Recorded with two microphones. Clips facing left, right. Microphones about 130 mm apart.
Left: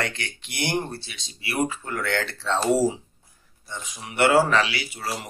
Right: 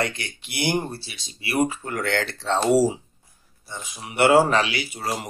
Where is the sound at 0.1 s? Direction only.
10° right (ahead or behind).